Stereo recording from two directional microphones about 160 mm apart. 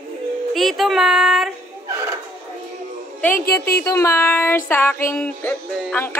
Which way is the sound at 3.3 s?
75° left (ahead or behind).